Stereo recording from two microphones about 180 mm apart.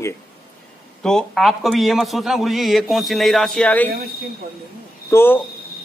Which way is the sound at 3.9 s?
60° right (ahead or behind).